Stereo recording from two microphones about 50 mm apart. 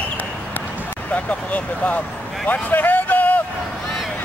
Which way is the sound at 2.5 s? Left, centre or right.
Left.